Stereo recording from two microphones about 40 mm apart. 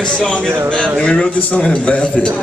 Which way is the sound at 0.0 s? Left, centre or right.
Left.